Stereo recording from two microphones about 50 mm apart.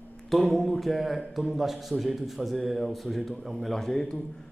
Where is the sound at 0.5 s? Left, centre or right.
Centre.